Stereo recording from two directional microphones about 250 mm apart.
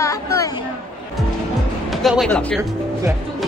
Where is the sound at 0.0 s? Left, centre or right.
Centre.